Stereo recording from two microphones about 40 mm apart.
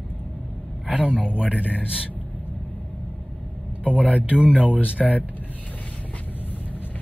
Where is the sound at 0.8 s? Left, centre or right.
Right.